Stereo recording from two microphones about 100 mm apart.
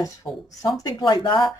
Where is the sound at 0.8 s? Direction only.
45° left (ahead or behind).